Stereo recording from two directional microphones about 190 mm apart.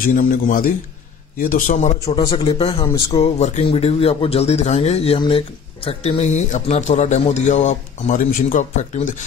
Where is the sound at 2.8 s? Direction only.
15° left (ahead or behind).